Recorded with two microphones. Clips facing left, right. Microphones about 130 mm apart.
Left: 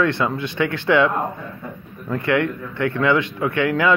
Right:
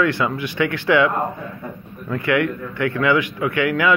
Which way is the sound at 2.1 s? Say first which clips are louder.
Even; 20° left (ahead or behind).